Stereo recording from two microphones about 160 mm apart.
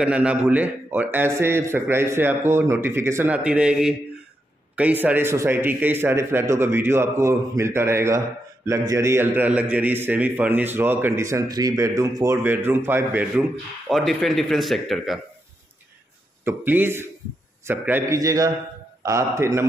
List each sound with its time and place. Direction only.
0.0 s a man's voice: 5° right (ahead or behind)
13.8 s speech: centre (ahead or behind)
16.4 s a man's voice: 10° right (ahead or behind)